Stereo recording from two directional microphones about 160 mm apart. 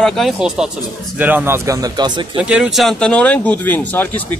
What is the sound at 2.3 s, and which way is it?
Speech, 5° right (ahead or behind).